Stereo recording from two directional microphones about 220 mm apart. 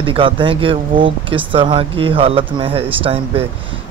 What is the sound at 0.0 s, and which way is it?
Speech, 25° right (ahead or behind).